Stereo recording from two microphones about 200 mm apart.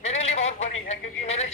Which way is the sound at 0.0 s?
30° left (ahead or behind).